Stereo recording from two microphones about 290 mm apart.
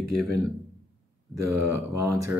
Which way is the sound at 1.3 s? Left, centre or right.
Right.